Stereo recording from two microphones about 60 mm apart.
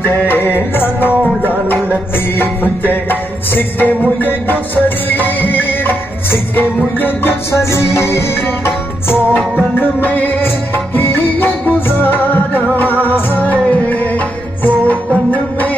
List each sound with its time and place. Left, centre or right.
0.0 s music: left
7.5 s music: left
8.6 s music: left